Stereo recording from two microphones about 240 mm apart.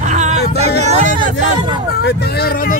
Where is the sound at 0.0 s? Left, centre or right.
Right.